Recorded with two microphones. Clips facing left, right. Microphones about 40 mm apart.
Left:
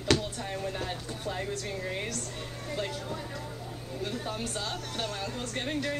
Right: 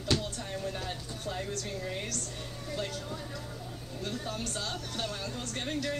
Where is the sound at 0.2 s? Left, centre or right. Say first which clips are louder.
Left 2 dB; centre.